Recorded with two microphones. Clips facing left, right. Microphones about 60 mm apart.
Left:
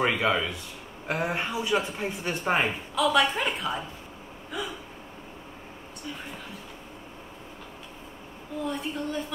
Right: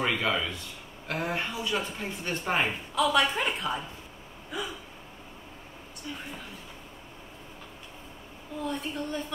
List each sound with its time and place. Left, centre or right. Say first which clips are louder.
0.0 s a man's voice: left 3 dB; centre
2.9 s a woman's voice: left 2 dB; centre
8.6 s a woman's voice: left 1 dB; centre